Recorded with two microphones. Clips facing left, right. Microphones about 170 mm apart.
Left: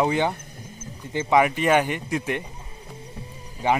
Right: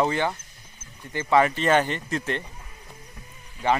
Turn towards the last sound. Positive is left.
turn(degrees=35)  # may be behind; listen again after turning